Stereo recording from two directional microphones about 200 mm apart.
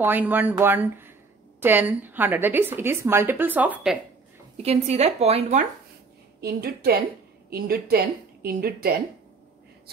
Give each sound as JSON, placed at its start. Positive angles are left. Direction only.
{"t": 0.0, "sound": "a woman's voice", "side_deg": -10}
{"t": 4.6, "sound": "a woman's voice", "side_deg": -30}
{"t": 6.4, "sound": "a woman's voice", "side_deg": -50}